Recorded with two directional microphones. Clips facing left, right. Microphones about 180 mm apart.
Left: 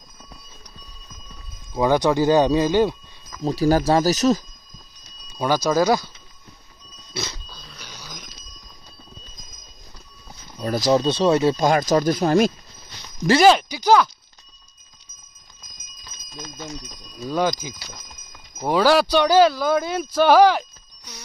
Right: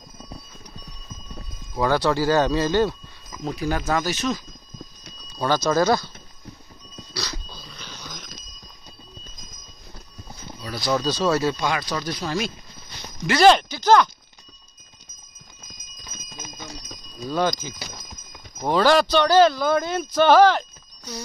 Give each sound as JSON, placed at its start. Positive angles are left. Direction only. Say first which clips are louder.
{"t": 1.8, "sound": "speech", "louder": "left 3 dB", "side_deg": 15}
{"t": 3.4, "sound": "speech", "louder": "left 7 dB", "side_deg": 35}
{"t": 5.4, "sound": "speech", "louder": "left 1 dB", "side_deg": 10}
{"t": 7.5, "sound": "dog", "louder": "right 2 dB", "side_deg": 0}
{"t": 7.8, "sound": "a sound", "louder": "even", "side_deg": 10}
{"t": 10.9, "sound": "speech", "louder": "left 4 dB", "side_deg": 25}
{"t": 11.5, "sound": "speech", "louder": "left 8 dB", "side_deg": 45}
{"t": 13.4, "sound": "speech", "louder": "right 2 dB", "side_deg": 5}
{"t": 16.3, "sound": "bicycle bell", "louder": "left 4 dB", "side_deg": -15}
{"t": 17.3, "sound": "speech", "louder": "left 1 dB", "side_deg": 10}